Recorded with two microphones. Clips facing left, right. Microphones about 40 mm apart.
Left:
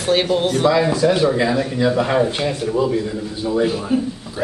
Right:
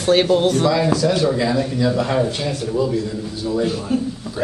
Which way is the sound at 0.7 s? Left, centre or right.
Centre.